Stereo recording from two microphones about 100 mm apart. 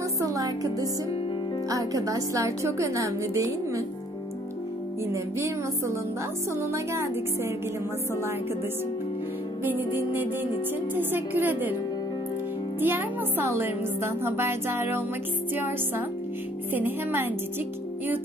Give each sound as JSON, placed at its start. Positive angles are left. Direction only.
{"t": 0.2, "sound": "music", "side_deg": -35}
{"t": 1.7, "sound": "speech", "side_deg": -35}
{"t": 5.1, "sound": "music", "side_deg": -30}
{"t": 9.7, "sound": "music", "side_deg": -20}
{"t": 12.8, "sound": "music", "side_deg": -20}
{"t": 16.7, "sound": "music", "side_deg": -20}